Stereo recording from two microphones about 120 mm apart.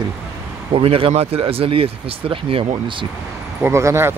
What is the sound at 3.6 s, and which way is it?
Speech, 25° right (ahead or behind).